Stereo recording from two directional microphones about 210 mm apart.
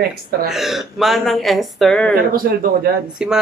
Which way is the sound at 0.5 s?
Centre (ahead or behind).